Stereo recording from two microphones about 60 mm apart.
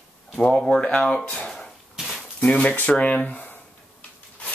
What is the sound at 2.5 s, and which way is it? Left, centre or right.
Speech, centre.